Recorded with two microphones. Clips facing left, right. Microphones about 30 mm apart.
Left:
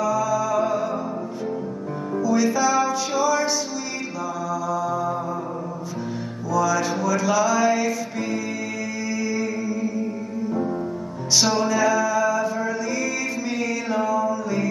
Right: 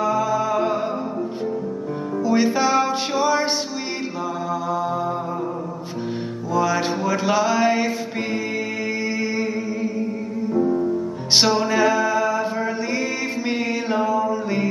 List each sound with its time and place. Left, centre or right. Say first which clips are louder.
0.0 s music: right 1 dB; right
2.2 s music: right 1 dB; right
4.6 s mantra: even; right
6.5 s a sound: right 1 dB; right
9.1 s music: right 2 dB; right
10.5 s music: right 7 dB; centre
11.3 s music: right 2 dB; right